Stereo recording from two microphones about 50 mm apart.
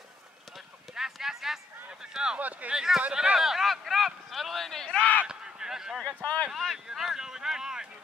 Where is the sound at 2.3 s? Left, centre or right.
Right.